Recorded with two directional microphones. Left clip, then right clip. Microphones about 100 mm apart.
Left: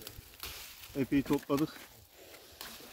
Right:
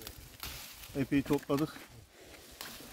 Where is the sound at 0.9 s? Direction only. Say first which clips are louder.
Even; 55° right (ahead or behind).